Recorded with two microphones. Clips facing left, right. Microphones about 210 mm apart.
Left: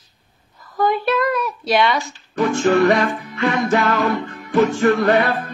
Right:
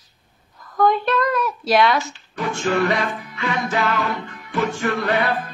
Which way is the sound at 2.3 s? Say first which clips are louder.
Left 6 dB; 45° left (ahead or behind).